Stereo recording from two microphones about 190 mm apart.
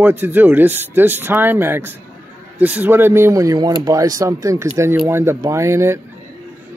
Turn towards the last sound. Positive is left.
turn(degrees=-15)  # may be behind; listen again after turning